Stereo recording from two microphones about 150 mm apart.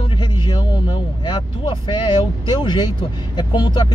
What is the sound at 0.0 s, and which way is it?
A man's voice, 30° left (ahead or behind).